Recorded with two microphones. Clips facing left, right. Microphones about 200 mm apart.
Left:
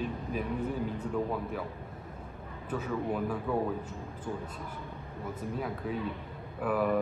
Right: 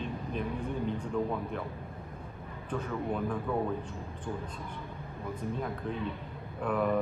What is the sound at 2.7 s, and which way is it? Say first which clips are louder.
Speech: left 1 dB; 5° left (ahead or behind).